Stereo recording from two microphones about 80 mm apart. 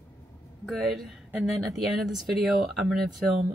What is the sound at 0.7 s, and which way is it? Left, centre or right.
A woman's voice, centre.